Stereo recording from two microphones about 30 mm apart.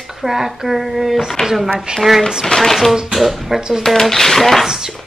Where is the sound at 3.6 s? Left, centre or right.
Right.